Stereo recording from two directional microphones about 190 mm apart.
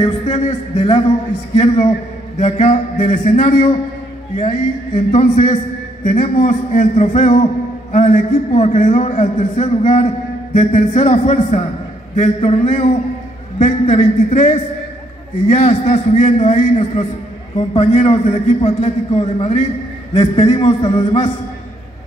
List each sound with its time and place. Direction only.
0.0 s a man's voice: 35° left (ahead or behind)
5.1 s a man's voice: 40° left (ahead or behind)